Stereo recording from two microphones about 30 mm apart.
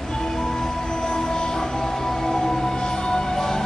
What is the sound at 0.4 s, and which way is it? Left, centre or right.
Music, left.